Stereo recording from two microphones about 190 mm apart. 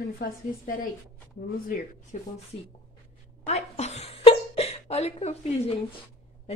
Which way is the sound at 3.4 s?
35° left (ahead or behind).